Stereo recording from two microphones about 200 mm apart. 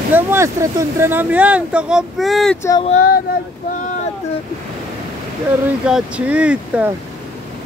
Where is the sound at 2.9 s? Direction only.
45° left (ahead or behind).